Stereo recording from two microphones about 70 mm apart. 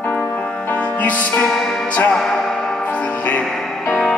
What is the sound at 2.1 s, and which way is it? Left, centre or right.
Music, centre.